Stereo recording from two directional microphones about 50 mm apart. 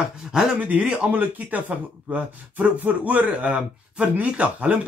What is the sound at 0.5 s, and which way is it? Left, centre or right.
Speech, right.